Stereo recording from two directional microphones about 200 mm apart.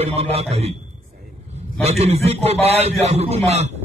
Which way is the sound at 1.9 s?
30° right (ahead or behind).